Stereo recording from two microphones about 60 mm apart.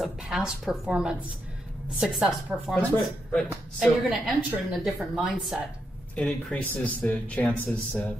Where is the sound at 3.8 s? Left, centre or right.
Centre.